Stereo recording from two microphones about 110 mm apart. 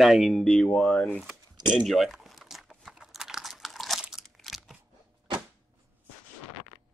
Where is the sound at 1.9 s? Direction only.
Centre (ahead or behind).